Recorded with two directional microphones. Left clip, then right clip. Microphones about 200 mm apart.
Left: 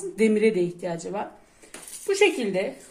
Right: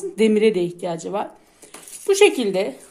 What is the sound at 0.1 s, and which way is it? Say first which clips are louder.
Speech: right 4 dB; 35° right (ahead or behind).